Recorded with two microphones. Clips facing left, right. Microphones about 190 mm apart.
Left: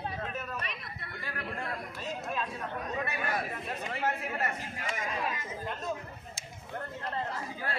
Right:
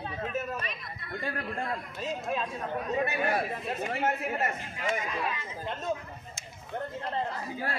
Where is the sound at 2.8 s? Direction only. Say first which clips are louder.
Right 7 dB; 25° right (ahead or behind).